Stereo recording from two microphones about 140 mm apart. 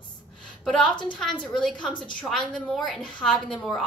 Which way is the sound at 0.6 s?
5° left (ahead or behind).